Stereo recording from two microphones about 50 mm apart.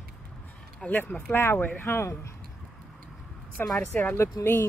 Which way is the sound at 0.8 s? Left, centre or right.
Centre.